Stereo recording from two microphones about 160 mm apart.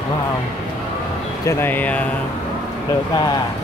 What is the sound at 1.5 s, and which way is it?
Speech, 15° left (ahead or behind).